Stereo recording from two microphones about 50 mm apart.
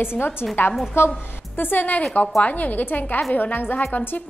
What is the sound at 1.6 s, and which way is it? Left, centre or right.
A woman's voice, left.